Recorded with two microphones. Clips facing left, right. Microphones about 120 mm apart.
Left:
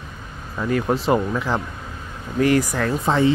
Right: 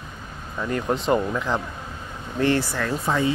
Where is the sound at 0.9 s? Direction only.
5° left (ahead or behind).